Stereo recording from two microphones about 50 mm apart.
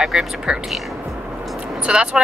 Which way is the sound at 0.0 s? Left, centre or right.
Centre.